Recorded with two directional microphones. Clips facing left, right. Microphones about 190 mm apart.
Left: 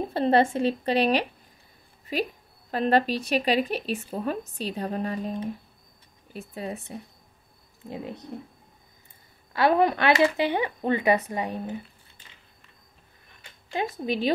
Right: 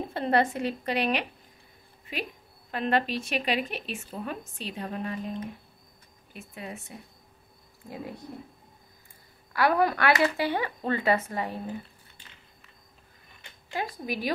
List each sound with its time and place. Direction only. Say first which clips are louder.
0.1 s speech: left 4 dB; 30° left (ahead or behind)
7.9 s speech: left 3 dB; 20° left (ahead or behind)
9.5 s speech: left 3 dB; 25° left (ahead or behind)
13.7 s speech: left 5 dB; 25° left (ahead or behind)